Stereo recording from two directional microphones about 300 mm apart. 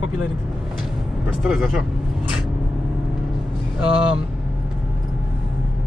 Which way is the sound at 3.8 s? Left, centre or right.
Left.